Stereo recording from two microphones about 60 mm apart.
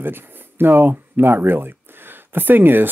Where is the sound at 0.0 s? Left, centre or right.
Right.